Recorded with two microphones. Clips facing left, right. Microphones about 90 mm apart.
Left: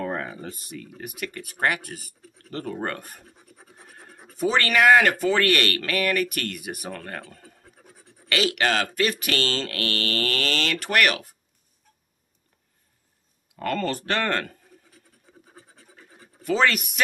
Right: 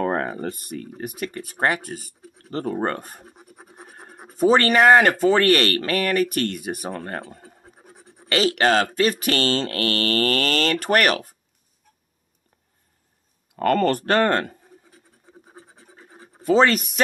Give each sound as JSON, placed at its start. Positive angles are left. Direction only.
{"t": 0.0, "sound": "a sound", "side_deg": -50}
{"t": 0.7, "sound": "speech", "side_deg": -35}
{"t": 3.8, "sound": "scratch", "side_deg": -30}
{"t": 4.3, "sound": "speech", "side_deg": -35}
{"t": 13.6, "sound": "speech", "side_deg": -50}
{"t": 14.1, "sound": "speech", "side_deg": -35}
{"t": 15.4, "sound": "scratch", "side_deg": -25}
{"t": 16.2, "sound": "speech", "side_deg": -30}